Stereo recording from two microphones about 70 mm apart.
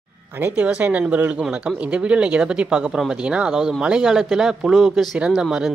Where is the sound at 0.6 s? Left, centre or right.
Right.